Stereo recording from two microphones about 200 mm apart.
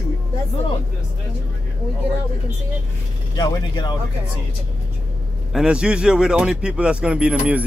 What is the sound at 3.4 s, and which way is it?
Speech, 20° left (ahead or behind).